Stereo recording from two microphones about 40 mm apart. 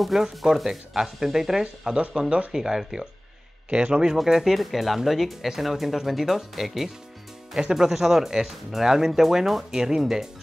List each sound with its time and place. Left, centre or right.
0.4 s speech: centre
2.1 s speech: right
3.7 s speech: right
4.2 s speech: centre